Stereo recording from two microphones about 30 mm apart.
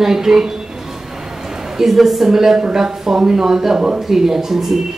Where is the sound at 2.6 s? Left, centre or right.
Right.